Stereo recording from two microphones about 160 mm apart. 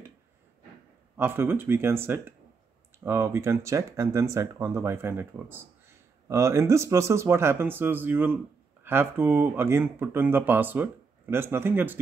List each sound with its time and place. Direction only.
1.1 s speech: 15° right (ahead or behind)